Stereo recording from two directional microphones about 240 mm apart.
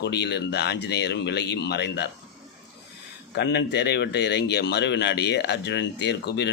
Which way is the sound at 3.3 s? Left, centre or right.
Left.